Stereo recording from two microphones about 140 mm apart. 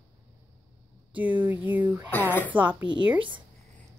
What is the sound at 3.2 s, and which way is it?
Speech, 35° right (ahead or behind).